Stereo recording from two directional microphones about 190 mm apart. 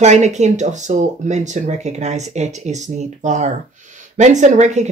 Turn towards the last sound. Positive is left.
turn(degrees=-40)  # may be behind; listen again after turning